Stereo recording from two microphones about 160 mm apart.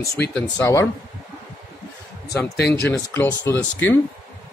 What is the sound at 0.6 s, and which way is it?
Speech, 20° left (ahead or behind).